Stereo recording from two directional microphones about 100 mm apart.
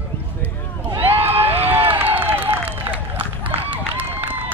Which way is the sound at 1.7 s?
20° right (ahead or behind).